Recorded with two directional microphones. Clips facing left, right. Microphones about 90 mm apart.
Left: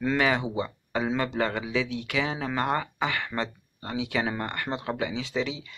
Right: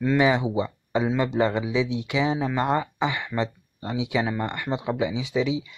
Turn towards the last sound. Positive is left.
turn(degrees=-10)  # may be behind; listen again after turning